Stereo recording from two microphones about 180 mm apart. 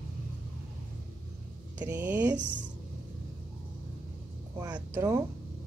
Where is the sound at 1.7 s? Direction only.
10° right (ahead or behind).